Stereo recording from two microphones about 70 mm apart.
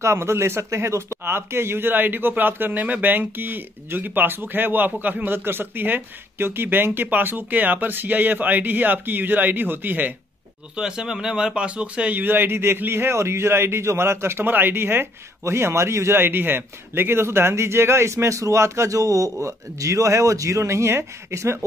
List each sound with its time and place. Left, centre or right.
0.0 s a man's voice: right
10.8 s speech: centre; by 16.2 s right
16.2 s speech: right